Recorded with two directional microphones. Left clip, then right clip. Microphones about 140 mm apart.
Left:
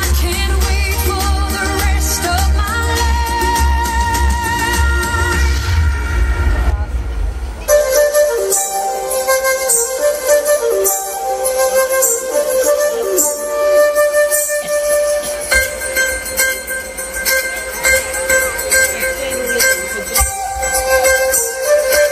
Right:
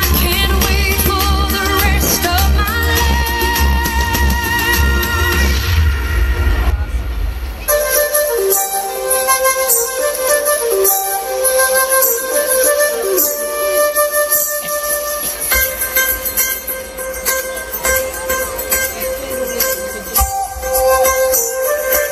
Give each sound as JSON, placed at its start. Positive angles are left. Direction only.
{"t": 0.0, "sound": "music", "side_deg": 40}
{"t": 7.6, "sound": "music", "side_deg": 40}
{"t": 18.3, "sound": "music", "side_deg": 35}